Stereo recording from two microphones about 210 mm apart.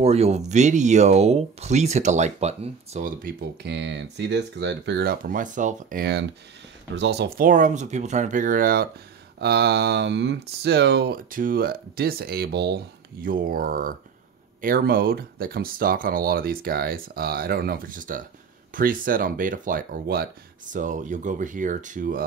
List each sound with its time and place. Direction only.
0.0 s speech: 30° right (ahead or behind)